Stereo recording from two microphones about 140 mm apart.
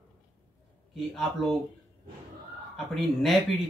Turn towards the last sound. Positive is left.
turn(degrees=0)  # may be behind; listen again after turning